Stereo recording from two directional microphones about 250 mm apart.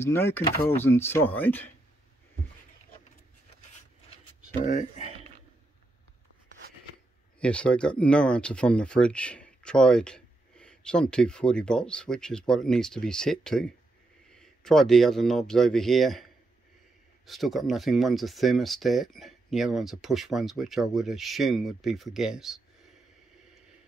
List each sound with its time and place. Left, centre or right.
0.0 s speech: centre
4.6 s speech: left
7.3 s speech: centre
17.3 s speech: centre